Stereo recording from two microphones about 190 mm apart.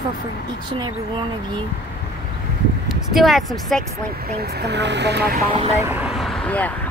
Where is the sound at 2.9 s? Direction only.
Centre (ahead or behind).